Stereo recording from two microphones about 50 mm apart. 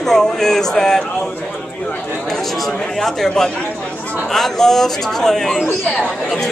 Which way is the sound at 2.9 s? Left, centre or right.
Centre.